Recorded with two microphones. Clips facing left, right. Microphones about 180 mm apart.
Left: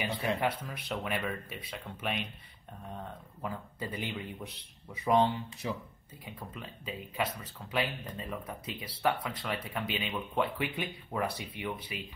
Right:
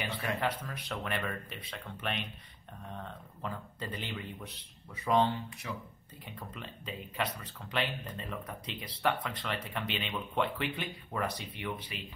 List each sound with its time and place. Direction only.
0.0 s speech: 15° left (ahead or behind)
5.6 s speech: 25° left (ahead or behind)
6.5 s speech: 5° left (ahead or behind)